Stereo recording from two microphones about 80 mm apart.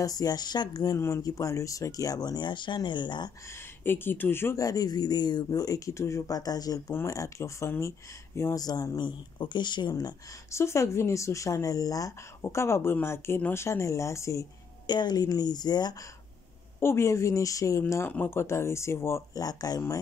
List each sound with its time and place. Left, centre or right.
0.0 s a woman's voice: left
0.9 s speech: left
3.8 s speech: left
4.6 s speech: left
8.5 s speech: left
8.9 s speech: left
10.5 s speech: left
12.5 s speech: left
14.9 s a woman's voice: left
16.8 s speech: left
18.0 s speech: left
19.4 s speech: left